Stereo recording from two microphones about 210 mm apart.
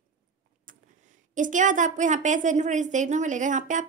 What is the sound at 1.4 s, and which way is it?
A woman's voice, 35° right (ahead or behind).